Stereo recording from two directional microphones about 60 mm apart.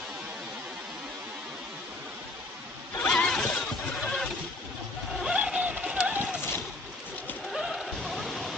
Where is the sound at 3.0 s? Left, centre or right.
Centre.